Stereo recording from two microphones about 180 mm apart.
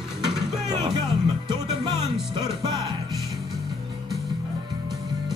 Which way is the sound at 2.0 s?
Centre (ahead or behind).